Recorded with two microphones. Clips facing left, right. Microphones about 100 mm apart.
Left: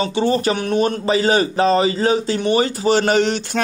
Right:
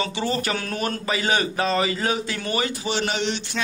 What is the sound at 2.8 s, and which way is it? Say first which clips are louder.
Speech: left 9 dB; 45° left (ahead or behind).